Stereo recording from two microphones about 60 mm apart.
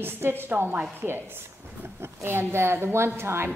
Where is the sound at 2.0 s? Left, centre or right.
Right.